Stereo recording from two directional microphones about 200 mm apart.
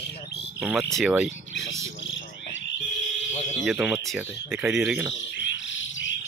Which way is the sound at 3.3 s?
35° left (ahead or behind).